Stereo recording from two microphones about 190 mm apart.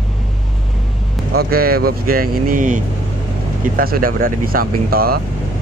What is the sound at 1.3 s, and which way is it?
Speech, 55° right (ahead or behind).